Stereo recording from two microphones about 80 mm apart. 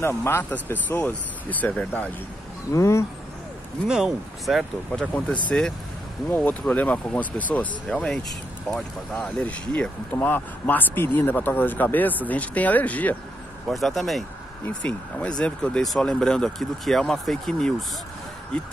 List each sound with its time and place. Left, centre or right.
0.2 s speech: left
2.7 s speech: left
3.8 s speech: centre
5.1 s speech: centre
6.7 s speech: centre
7.9 s speech: centre
13.7 s speech: centre
14.7 s speech: centre